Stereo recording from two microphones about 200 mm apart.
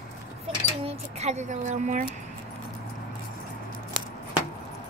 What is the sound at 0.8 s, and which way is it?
Speech, 35° right (ahead or behind).